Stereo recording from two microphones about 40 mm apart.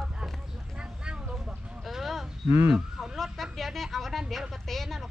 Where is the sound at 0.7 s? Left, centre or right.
Right.